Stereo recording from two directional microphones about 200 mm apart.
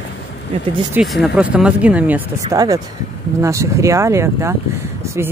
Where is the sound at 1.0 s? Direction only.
5° right (ahead or behind).